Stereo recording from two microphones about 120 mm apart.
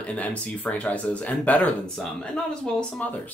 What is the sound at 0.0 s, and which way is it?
Speech, 10° left (ahead or behind).